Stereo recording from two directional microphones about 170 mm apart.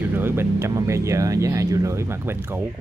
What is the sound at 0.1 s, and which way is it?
Speech, 15° right (ahead or behind).